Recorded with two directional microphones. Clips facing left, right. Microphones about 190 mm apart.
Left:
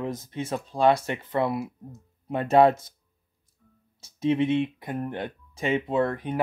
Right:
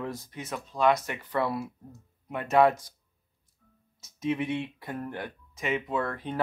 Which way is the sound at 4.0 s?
30° left (ahead or behind).